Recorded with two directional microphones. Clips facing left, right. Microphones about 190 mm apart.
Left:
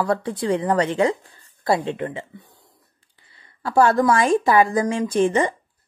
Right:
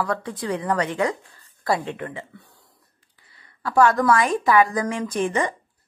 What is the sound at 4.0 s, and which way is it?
Speech, 30° left (ahead or behind).